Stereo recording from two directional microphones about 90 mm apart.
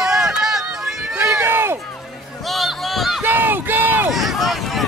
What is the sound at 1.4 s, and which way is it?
Run, 25° right (ahead or behind).